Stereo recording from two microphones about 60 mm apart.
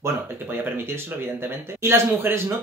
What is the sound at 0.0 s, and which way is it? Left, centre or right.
Speech, right.